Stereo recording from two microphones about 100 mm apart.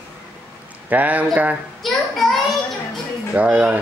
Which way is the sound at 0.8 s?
15° right (ahead or behind).